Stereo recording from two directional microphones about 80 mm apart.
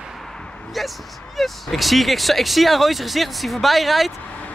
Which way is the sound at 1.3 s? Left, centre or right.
Centre.